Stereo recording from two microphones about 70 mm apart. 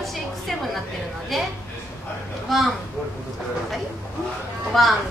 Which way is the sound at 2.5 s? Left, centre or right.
Centre.